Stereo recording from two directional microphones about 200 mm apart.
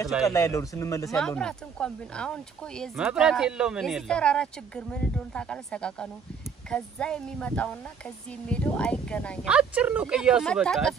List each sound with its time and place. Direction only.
0.3 s speech: 15° left (ahead or behind)
1.1 s speech: 5° left (ahead or behind)
9.5 s speech: 5° right (ahead or behind)